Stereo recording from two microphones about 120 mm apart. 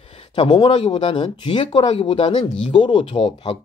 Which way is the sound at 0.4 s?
45° left (ahead or behind).